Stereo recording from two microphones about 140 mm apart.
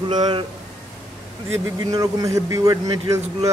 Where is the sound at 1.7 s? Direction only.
25° right (ahead or behind).